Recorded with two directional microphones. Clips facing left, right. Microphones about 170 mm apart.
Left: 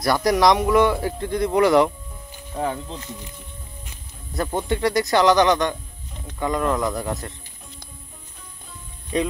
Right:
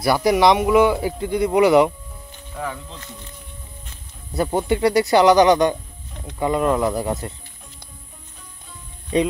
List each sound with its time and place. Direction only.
0.0 s speech: 5° right (ahead or behind)
2.5 s speech: 30° left (ahead or behind)
4.3 s speech: 10° right (ahead or behind)